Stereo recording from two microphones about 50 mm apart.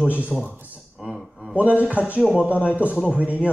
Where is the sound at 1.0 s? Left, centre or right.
Centre.